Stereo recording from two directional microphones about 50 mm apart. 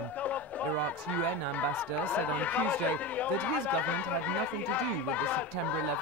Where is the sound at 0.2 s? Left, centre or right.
Left.